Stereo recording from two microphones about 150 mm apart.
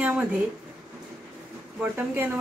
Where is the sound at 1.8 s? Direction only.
15° right (ahead or behind).